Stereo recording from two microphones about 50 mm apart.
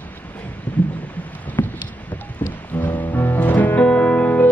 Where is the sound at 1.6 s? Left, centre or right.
Left.